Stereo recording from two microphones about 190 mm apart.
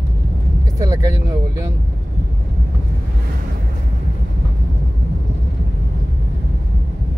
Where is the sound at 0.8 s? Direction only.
20° right (ahead or behind).